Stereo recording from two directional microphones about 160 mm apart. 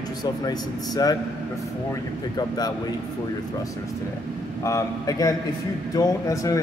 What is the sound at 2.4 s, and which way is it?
Speech, 25° left (ahead or behind).